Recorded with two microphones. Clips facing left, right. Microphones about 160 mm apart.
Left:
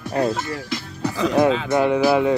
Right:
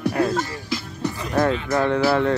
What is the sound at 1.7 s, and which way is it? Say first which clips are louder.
Music: left 1 dB; 10° left (ahead or behind).